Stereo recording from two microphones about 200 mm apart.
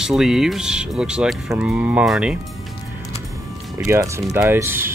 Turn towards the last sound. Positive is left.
turn(degrees=-10)  # may be behind; listen again after turning